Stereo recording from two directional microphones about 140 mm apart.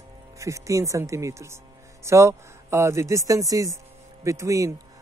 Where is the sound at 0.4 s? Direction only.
20° right (ahead or behind).